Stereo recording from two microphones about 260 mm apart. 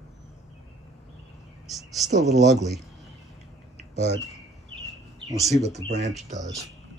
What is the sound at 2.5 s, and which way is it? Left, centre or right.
Speech, centre.